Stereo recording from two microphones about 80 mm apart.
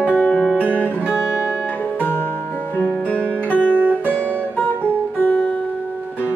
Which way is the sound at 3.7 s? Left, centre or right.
Right.